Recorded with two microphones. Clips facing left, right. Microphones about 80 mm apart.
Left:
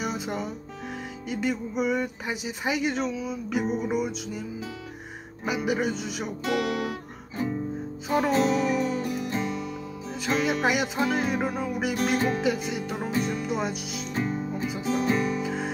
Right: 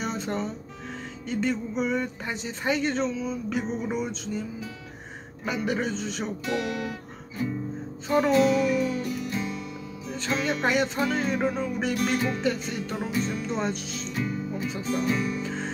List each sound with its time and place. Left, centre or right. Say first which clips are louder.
0.0 s music: right 1 dB; centre
1.3 s speech: right 1 dB; centre
6.4 s speech: left 4 dB; left
8.3 s music: right 3 dB; left
8.7 s music: even; left
9.4 s music: left 3 dB; left
10.1 s speech: left 2 dB; centre
14.1 s music: left 2 dB; left
14.7 s speech: left 2 dB; centre
15.1 s music: left 2 dB; left
15.4 s music: left 2 dB; centre